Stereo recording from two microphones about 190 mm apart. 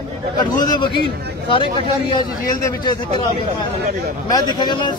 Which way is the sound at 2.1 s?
20° left (ahead or behind).